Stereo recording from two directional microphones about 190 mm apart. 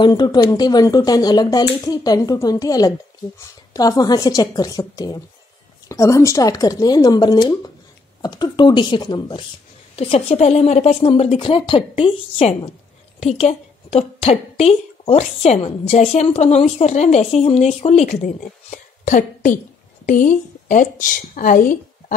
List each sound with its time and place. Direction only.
0.0 s a woman's voice: 20° left (ahead or behind); by 21.7 s 45° left (ahead or behind)